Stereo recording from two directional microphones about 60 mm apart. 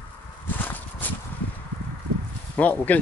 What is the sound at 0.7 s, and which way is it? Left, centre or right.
Horse, left.